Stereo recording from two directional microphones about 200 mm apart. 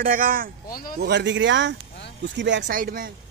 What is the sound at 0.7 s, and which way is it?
Speech, 45° left (ahead or behind).